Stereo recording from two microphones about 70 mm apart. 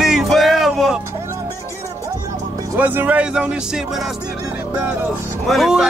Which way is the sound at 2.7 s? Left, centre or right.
Right.